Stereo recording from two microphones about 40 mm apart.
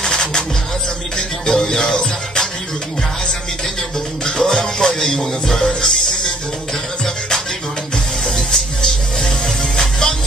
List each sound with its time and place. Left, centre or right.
0.0 s music: centre
4.2 s music: centre
8.4 s music: centre